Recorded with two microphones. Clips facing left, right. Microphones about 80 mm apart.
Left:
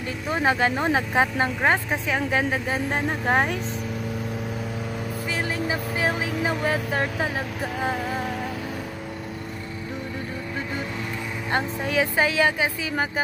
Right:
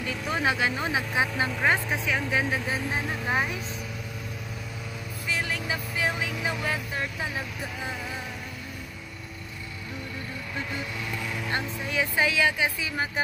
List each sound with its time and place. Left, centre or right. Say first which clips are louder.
0.0 s speech: left 3 dB; left
1.6 s speech: left 1 dB; left
5.3 s vehicle: left 2 dB; left
6.9 s speech: left 6 dB; left
11.8 s speech: left 5 dB; left
12.2 s speech: left 1 dB; left